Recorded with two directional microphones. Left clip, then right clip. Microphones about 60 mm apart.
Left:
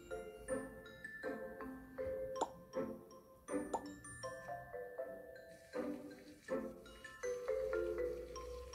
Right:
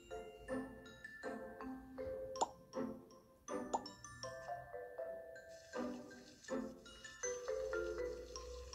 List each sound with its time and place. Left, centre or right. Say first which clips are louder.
0.1 s music: left 2 dB; right
5.7 s music: left 2 dB; right
7.2 s marimba: left 2 dB; right